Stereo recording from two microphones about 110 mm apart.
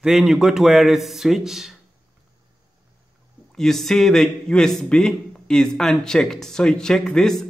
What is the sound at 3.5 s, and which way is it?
Speech, 5° left (ahead or behind).